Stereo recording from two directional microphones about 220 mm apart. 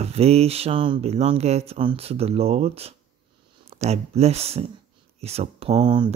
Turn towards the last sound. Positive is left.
turn(degrees=-20)  # may be behind; listen again after turning